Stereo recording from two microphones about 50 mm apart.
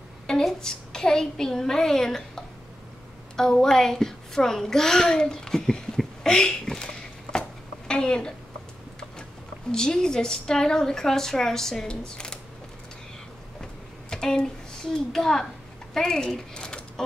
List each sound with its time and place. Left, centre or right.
0.3 s a child's voice: centre
5.9 s a sound: centre
7.9 s a child's voice: centre
9.7 s a child's voice: centre
14.1 s a child's voice: centre
15.9 s a sound: centre